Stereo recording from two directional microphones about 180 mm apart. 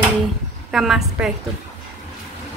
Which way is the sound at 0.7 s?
Centre (ahead or behind).